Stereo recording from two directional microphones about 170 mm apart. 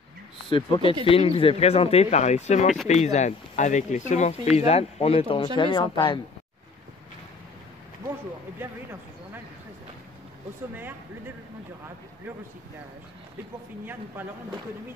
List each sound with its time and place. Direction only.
0.5 s speech: 30° left (ahead or behind)